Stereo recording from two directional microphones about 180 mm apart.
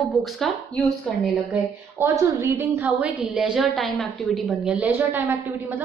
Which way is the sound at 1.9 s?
15° right (ahead or behind).